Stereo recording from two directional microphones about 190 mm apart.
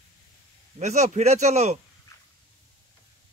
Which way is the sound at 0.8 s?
35° right (ahead or behind).